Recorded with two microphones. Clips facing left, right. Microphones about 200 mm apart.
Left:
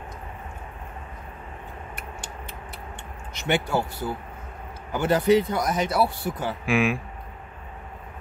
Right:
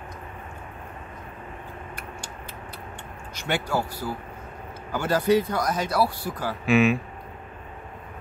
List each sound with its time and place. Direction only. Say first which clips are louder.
3.3 s speech: left 2 dB; 20° left (ahead or behind)
6.6 s speech: right 4 dB; 10° left (ahead or behind)